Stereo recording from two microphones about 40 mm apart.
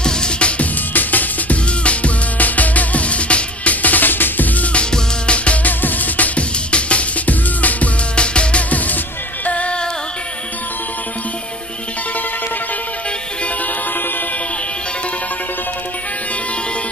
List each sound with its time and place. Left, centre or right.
0.0 s music: left
0.9 s music: left
1.9 s music: left
4.9 s music: left
5.6 s music: left
8.2 s music: left